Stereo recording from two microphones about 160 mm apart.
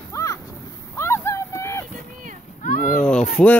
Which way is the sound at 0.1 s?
20° left (ahead or behind).